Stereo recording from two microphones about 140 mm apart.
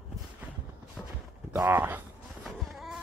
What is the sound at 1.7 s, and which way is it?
Speech, 15° right (ahead or behind).